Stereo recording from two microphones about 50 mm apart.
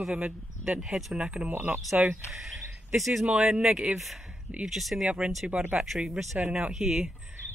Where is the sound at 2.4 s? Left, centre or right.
Centre.